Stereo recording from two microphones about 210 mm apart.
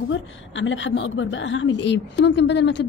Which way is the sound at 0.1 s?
65° left (ahead or behind).